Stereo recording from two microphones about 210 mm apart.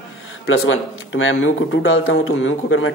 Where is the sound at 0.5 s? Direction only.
65° left (ahead or behind).